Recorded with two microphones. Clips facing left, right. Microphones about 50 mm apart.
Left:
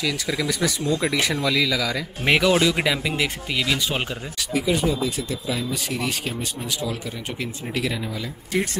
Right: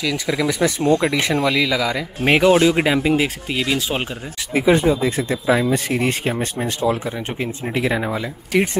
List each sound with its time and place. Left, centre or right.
0.0 s speech: centre
0.5 s speech: right
0.7 s speech: right
1.0 s speech: centre
2.6 s speech: right
4.6 s speech: right
7.3 s speech: right